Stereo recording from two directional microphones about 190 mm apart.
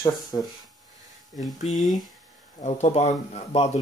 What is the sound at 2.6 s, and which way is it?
Speech, 35° left (ahead or behind).